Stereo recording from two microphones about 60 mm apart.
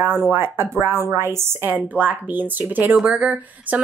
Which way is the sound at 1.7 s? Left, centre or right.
Right.